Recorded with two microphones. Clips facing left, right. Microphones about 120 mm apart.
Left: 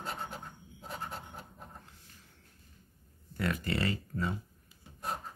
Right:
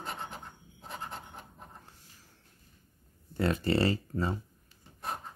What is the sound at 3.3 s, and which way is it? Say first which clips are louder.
Speech: right 5 dB; 30° right (ahead or behind).